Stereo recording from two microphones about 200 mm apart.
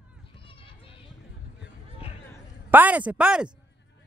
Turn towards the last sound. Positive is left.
turn(degrees=-5)  # may be behind; listen again after turning